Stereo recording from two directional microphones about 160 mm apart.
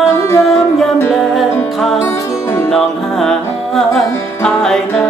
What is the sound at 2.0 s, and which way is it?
Music, 15° left (ahead or behind).